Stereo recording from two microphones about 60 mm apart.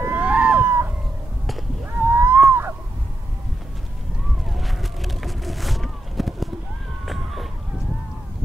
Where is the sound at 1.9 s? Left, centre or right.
Right.